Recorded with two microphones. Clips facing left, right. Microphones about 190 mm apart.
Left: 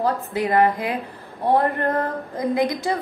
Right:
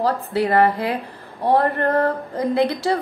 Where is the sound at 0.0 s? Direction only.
15° left (ahead or behind).